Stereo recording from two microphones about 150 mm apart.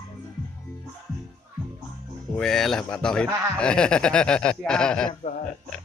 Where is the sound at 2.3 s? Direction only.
5° left (ahead or behind).